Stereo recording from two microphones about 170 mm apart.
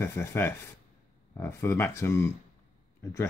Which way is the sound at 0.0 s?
15° left (ahead or behind).